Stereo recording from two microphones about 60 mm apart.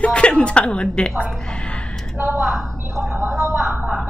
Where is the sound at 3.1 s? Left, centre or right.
Right.